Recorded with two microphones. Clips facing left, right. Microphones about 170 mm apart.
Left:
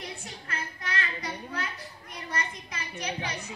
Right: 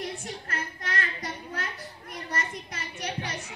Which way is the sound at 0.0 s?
50° right (ahead or behind).